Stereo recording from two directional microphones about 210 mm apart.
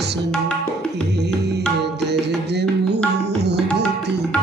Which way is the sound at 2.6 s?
55° right (ahead or behind).